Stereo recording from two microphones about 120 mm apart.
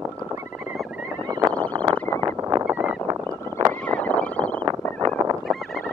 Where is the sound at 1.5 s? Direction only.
10° left (ahead or behind).